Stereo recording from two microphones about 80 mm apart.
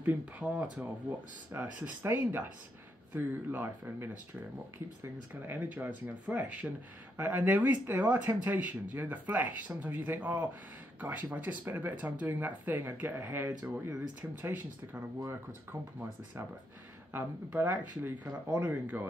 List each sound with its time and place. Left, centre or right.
0.0 s speech: right
17.1 s speech: right